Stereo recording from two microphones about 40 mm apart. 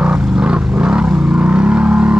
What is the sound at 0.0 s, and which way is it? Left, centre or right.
Vehicle, right.